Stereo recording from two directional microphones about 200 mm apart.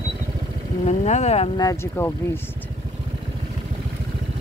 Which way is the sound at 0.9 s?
35° left (ahead or behind).